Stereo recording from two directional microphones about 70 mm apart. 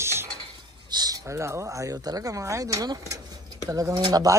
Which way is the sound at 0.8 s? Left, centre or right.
Right.